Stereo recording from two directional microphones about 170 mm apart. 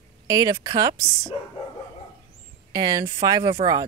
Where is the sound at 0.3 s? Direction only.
20° right (ahead or behind).